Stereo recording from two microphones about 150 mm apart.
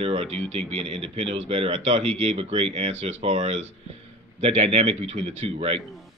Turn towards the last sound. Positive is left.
turn(degrees=-40)  # may be behind; listen again after turning